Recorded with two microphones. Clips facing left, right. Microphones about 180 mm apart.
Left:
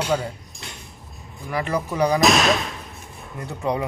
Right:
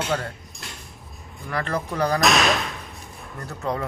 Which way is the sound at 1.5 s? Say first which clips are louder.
Left 3 dB; 10° left (ahead or behind).